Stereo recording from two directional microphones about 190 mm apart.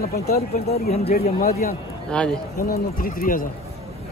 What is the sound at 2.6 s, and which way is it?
Speech, 50° left (ahead or behind).